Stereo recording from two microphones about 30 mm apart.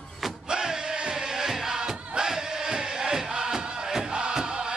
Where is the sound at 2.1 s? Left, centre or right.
Centre.